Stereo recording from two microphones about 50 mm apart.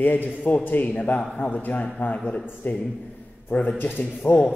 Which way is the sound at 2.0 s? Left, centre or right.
Left.